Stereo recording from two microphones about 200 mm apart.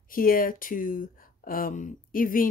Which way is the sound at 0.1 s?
45° left (ahead or behind).